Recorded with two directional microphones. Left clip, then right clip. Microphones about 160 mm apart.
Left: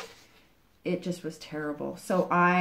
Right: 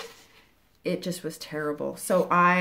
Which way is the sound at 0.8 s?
45° right (ahead or behind).